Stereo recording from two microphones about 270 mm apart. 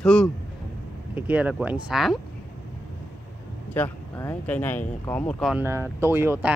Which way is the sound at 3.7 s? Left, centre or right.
Centre.